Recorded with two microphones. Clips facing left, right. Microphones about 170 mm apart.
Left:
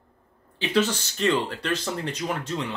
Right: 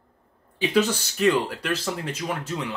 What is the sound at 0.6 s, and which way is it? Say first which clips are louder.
Speech: right 2 dB; 10° right (ahead or behind).